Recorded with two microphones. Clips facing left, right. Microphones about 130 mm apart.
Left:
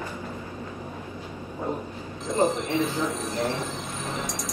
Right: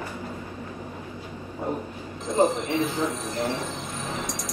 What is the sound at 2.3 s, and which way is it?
Train, centre (ahead or behind).